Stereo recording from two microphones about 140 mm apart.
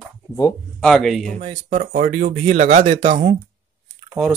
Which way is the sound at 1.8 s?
80° right.